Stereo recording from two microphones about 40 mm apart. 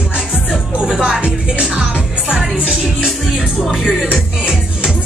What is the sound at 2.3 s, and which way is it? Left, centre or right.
Music, right.